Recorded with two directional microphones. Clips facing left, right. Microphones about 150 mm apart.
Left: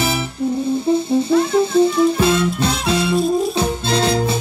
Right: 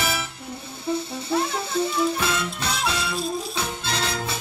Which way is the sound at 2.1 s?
30° left (ahead or behind).